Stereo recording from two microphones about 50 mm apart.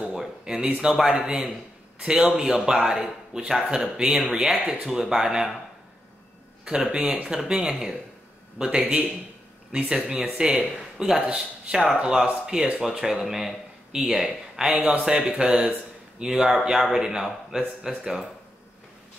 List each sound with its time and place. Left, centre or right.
0.1 s a sound: centre
0.7 s speech: centre
1.0 s a man's voice: centre
2.0 s a sound: centre
2.3 s a man's voice: centre
6.6 s a man's voice: centre